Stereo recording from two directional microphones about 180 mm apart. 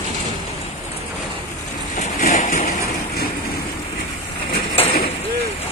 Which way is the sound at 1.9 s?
40° left (ahead or behind).